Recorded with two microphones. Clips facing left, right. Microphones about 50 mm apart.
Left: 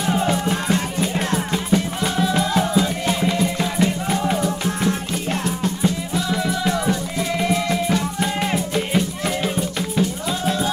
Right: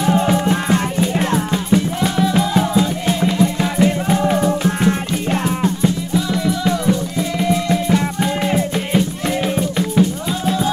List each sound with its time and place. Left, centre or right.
0.0 s music: centre
1.5 s music: centre; by 5.4 s right
5.8 s music: centre
7.9 s music: centre